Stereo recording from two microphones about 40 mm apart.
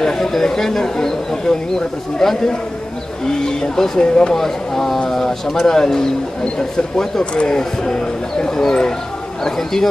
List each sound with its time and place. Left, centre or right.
0.0 s speech: centre
4.4 s speech: centre